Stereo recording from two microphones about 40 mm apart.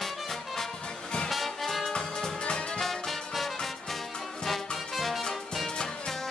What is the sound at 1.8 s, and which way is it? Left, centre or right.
Music, centre.